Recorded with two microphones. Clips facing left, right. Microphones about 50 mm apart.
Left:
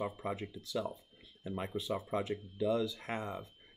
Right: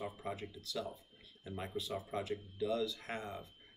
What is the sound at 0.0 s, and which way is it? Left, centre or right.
Speech, left.